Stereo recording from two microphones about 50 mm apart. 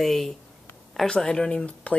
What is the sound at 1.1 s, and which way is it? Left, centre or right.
Speech, centre.